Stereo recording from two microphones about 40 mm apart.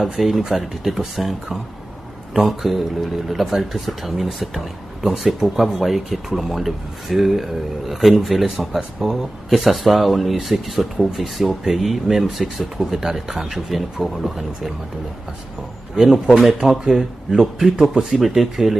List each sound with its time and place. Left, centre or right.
0.2 s speech: centre
16.0 s speech: centre
16.6 s speech: centre